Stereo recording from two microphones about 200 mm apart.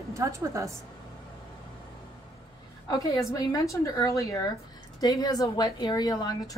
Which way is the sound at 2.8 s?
15° left (ahead or behind).